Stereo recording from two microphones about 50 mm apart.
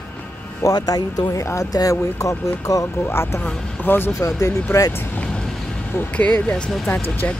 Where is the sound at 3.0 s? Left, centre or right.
Left.